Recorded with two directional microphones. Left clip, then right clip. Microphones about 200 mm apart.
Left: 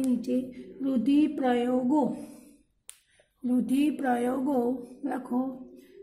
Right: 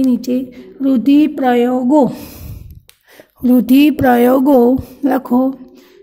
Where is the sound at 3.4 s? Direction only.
45° right (ahead or behind).